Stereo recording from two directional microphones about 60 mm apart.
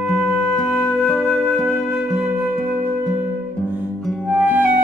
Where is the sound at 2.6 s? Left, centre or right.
Right.